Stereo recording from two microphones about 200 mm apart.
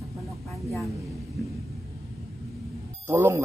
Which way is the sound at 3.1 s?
15° right (ahead or behind).